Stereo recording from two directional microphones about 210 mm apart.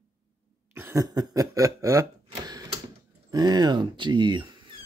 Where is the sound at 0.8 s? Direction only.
15° right (ahead or behind).